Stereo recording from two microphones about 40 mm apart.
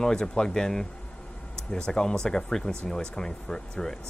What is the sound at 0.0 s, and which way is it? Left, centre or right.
Speech, centre.